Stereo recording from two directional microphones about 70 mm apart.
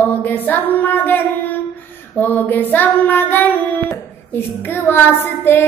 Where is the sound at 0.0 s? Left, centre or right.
Left.